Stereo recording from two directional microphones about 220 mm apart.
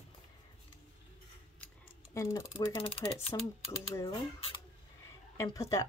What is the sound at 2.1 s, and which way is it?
Speech, 15° left (ahead or behind).